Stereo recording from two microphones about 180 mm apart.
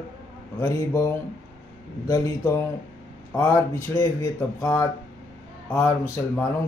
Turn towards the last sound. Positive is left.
turn(degrees=10)  # may be behind; listen again after turning